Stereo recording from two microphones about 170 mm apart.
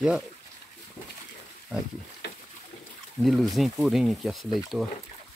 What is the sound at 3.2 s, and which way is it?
Speech, centre (ahead or behind).